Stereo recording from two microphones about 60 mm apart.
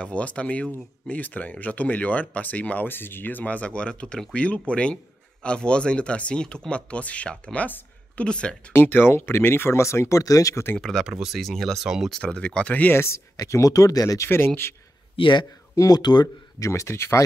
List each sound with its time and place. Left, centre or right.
0.0 s speech: left
8.7 s speech: left
10.8 s speech: centre
11.1 s speech: centre
11.8 s speech: centre
12.1 s speech: centre
12.9 s speech: left
13.4 s speech: left
14.2 s speech: left
15.7 s speech: left
16.5 s speech: left